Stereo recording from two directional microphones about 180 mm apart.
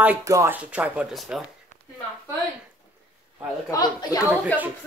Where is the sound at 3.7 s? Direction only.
20° left (ahead or behind).